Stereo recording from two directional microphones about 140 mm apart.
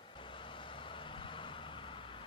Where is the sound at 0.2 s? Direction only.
35° left (ahead or behind).